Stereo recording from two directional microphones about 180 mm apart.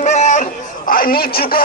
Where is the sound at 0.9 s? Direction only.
55° left (ahead or behind).